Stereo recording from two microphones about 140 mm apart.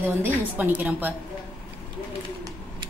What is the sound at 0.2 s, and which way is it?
Speech, 15° right (ahead or behind).